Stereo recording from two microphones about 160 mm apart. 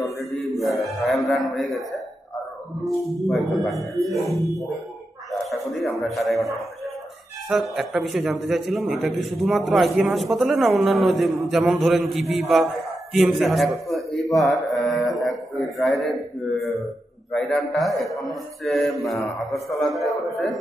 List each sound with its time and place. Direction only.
0.2 s chant: centre (ahead or behind)
1.2 s a man's voice: centre (ahead or behind)
7.7 s a man's voice: centre (ahead or behind)